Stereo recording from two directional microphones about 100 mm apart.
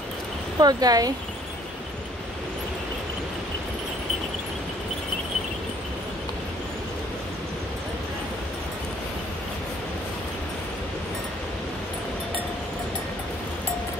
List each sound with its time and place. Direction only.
0.6 s speech: 40° right (ahead or behind)